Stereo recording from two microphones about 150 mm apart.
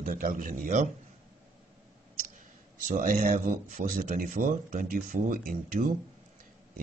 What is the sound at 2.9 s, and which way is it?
Speech, 60° right (ahead or behind).